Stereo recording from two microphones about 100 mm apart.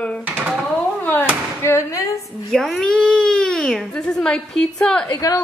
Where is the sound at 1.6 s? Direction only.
30° left (ahead or behind).